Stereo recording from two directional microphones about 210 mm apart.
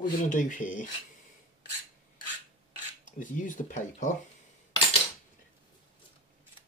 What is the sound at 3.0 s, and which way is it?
Speech, 40° left (ahead or behind).